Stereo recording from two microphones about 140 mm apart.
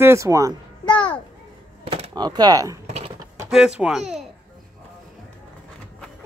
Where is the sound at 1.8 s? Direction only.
50° right (ahead or behind).